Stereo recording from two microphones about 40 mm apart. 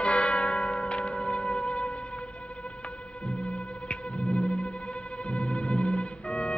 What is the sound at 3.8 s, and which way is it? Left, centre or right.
Music, left.